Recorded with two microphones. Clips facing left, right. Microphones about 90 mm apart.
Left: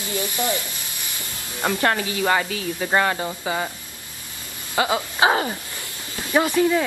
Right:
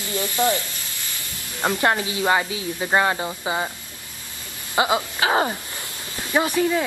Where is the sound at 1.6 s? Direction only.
20° right (ahead or behind).